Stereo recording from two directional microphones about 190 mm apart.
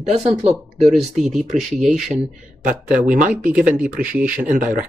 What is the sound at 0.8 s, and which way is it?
Speech, centre (ahead or behind).